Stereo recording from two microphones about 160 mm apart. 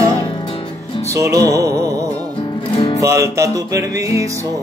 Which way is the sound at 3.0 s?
20° right (ahead or behind).